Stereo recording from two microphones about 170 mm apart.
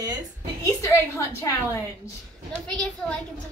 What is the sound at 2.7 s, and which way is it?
Speech, 5° left (ahead or behind).